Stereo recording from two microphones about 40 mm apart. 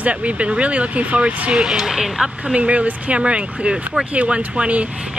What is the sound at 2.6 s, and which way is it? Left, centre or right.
Speech, right.